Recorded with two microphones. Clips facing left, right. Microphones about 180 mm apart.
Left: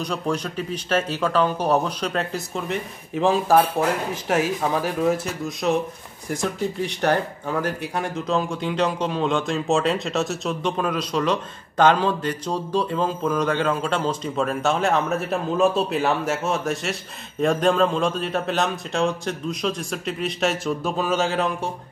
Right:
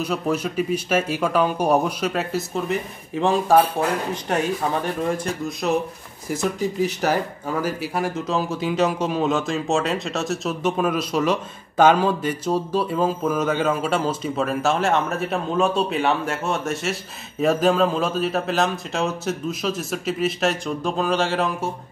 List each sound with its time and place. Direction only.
0.0 s speech: 5° right (ahead or behind)